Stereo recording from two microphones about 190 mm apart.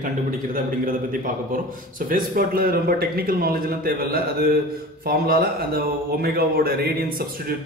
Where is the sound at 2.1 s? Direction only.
50° right (ahead or behind).